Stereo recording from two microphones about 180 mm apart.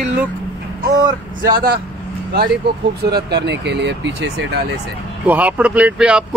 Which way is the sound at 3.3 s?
70° right (ahead or behind).